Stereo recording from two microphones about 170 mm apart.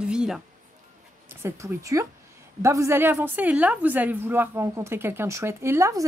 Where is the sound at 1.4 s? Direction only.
20° right (ahead or behind).